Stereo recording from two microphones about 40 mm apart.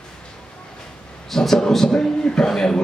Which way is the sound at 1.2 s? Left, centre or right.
Centre.